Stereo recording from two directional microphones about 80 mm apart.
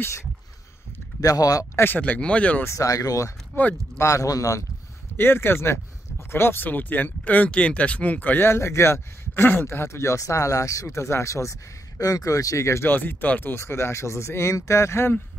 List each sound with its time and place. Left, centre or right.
1.2 s speech: left
1.8 s speech: left
2.6 s speech: left
5.1 s speech: left
12.0 s speech: left
12.9 s speech: left